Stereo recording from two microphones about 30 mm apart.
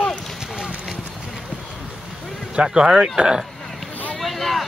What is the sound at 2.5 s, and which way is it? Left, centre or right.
Speech, right.